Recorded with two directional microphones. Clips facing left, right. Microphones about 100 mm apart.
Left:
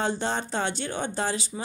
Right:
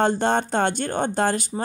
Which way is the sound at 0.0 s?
55° right (ahead or behind).